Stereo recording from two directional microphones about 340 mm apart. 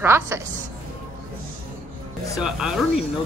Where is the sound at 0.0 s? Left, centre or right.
Centre.